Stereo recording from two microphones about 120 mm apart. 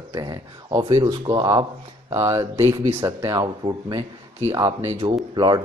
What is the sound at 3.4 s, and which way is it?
Speech, 35° right (ahead or behind).